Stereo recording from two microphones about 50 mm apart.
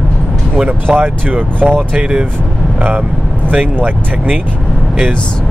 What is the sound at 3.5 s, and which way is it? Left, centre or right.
Speech, right.